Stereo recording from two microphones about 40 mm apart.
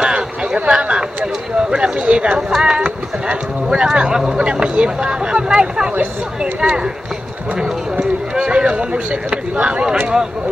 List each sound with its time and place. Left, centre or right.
0.0 s a sound: centre
2.5 s speech: centre
7.5 s run: centre
8.5 s speech: right